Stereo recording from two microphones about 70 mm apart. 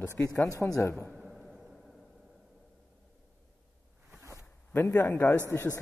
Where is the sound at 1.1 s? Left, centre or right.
Centre.